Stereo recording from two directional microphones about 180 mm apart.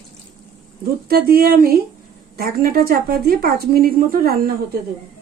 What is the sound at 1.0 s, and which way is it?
A woman's voice, 55° right (ahead or behind).